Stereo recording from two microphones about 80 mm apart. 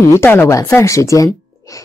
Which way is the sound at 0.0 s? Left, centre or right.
Left.